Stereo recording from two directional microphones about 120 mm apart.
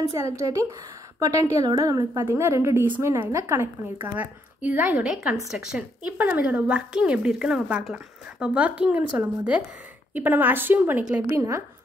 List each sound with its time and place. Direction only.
0.0 s a woman's voice: 25° right (ahead or behind)
4.9 s a woman's voice: 5° right (ahead or behind); by 11.6 s 25° right (ahead or behind)